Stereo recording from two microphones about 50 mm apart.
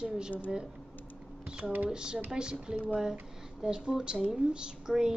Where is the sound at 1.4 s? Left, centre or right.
Centre.